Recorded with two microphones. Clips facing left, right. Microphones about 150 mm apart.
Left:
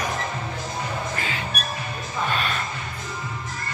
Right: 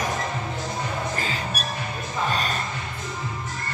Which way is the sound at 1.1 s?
35° right (ahead or behind).